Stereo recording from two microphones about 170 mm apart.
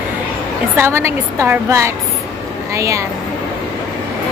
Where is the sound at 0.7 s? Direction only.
15° right (ahead or behind).